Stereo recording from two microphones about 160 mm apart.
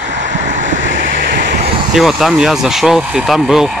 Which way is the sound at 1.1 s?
90° right.